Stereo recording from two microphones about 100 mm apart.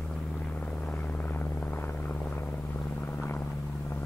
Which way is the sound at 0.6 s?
15° left (ahead or behind).